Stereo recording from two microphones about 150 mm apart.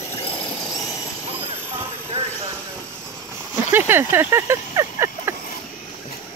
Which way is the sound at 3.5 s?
15° right (ahead or behind).